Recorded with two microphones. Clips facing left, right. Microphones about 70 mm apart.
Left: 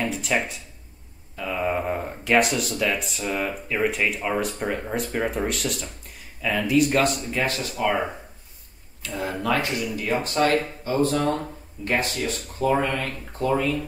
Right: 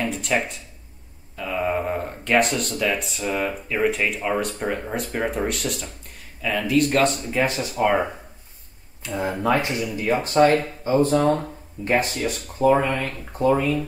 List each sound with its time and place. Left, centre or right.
0.0 s a sound: centre
1.3 s speech: centre
7.4 s speech: centre
9.2 s speech: right